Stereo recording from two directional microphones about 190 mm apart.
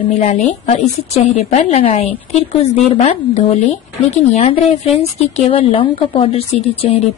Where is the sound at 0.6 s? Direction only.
35° left (ahead or behind).